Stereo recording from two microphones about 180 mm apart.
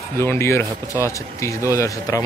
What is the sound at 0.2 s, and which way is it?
Speech, 15° left (ahead or behind).